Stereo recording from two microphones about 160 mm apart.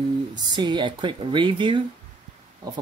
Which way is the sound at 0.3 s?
30° right (ahead or behind).